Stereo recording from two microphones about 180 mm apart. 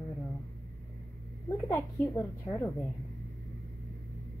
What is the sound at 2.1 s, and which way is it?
Speech, 15° left (ahead or behind).